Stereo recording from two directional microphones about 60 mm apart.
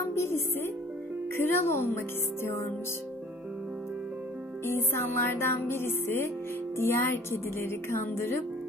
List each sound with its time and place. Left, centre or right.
0.0 s music: left
4.6 s music: left